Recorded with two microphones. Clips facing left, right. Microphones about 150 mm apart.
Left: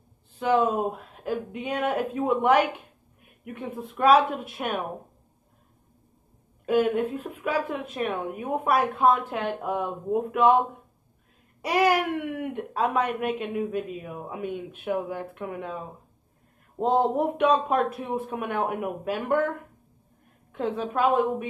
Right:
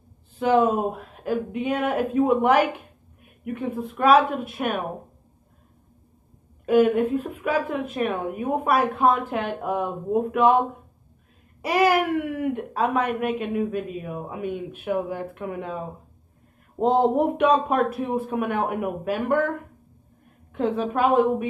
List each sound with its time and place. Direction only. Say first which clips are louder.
0.4 s speech: right 3 dB; 5° right (ahead or behind)
6.6 s a woman's voice: right 4 dB; 5° right (ahead or behind)
11.6 s babbling: right 2 dB; centre (ahead or behind)
12.1 s speech: right 5 dB; 5° right (ahead or behind)
16.8 s a sound: right 4 dB; 25° right (ahead or behind)
17.1 s speech: right 3 dB; 10° right (ahead or behind)
20.5 s speech: right 3 dB; 5° right (ahead or behind)